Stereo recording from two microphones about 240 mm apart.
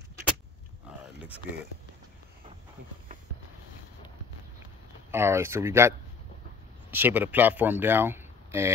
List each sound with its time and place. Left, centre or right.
0.9 s a sound: centre
1.2 s speech: centre
5.1 s speech: centre